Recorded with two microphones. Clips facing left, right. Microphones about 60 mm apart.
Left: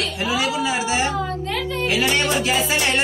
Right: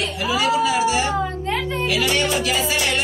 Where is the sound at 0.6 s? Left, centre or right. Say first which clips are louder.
Right 2 dB; left.